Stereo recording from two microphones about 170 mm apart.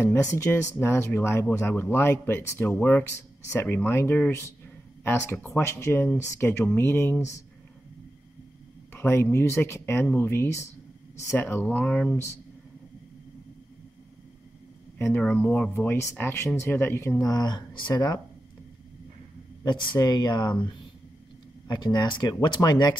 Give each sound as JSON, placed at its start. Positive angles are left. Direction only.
{"t": 0.0, "sound": "speech", "side_deg": 15}
{"t": 8.9, "sound": "speech", "side_deg": 15}
{"t": 15.0, "sound": "speech", "side_deg": 10}
{"t": 19.6, "sound": "speech", "side_deg": 25}
{"t": 21.6, "sound": "speech", "side_deg": 25}